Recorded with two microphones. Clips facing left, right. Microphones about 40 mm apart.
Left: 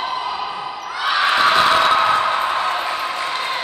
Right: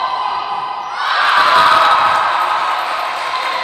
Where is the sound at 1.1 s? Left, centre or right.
Centre.